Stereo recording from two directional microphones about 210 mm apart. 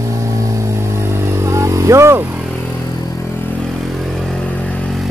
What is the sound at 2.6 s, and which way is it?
Vehicle, 10° left (ahead or behind).